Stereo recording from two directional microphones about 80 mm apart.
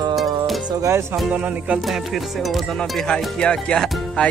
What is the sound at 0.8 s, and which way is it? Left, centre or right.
Speech, right.